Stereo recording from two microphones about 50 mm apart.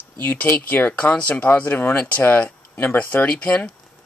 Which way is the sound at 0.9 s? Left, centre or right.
Left.